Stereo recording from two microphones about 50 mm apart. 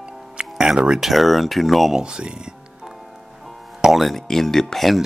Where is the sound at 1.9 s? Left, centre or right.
Centre.